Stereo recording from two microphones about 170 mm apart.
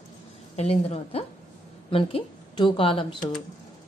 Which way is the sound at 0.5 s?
35° left (ahead or behind).